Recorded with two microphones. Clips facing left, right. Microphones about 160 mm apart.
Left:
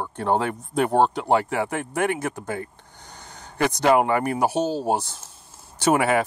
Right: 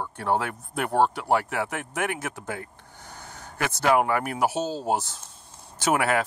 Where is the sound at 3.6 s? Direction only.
15° left (ahead or behind).